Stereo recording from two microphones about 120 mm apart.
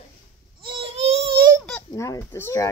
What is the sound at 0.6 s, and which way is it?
Baby cry, 50° right (ahead or behind).